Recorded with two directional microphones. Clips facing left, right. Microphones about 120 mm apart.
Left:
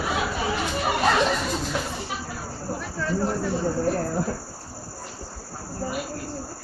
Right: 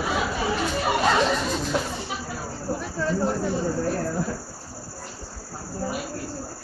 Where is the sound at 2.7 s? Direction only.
20° right (ahead or behind).